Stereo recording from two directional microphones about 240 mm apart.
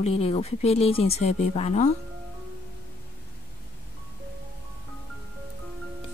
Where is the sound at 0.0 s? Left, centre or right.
Left.